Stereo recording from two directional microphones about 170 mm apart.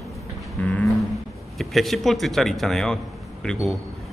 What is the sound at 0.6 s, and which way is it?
A man's voice, 10° left (ahead or behind).